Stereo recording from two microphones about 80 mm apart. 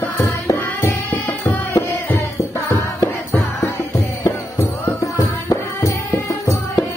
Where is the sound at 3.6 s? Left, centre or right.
Left.